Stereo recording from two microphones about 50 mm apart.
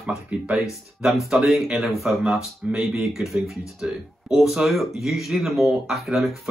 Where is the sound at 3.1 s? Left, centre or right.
Centre.